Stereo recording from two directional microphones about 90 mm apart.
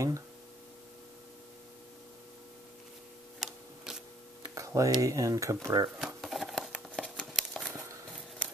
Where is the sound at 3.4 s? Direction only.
5° right (ahead or behind).